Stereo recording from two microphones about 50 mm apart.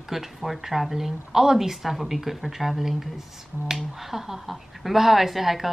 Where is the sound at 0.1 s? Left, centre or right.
Centre.